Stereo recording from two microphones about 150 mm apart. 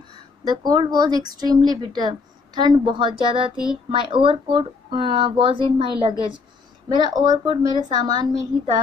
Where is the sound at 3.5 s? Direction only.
5° right (ahead or behind).